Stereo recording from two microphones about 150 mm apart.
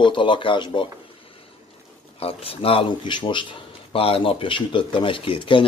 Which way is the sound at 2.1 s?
40° left (ahead or behind).